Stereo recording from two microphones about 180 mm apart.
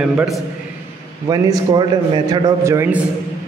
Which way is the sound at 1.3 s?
25° right (ahead or behind).